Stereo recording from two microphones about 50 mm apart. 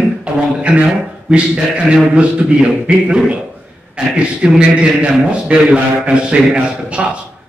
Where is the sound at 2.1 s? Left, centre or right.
Right.